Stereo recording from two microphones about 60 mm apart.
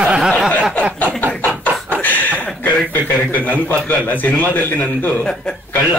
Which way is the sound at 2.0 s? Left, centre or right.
Left.